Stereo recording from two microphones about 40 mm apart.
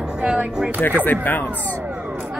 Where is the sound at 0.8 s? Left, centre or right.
Left.